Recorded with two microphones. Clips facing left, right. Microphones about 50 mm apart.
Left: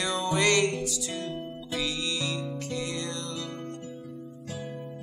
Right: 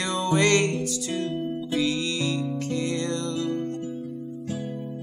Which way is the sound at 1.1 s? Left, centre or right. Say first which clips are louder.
Right 7 dB; right.